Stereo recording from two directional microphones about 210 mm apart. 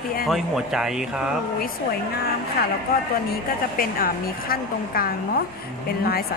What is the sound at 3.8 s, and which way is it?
A woman's voice, 45° left (ahead or behind).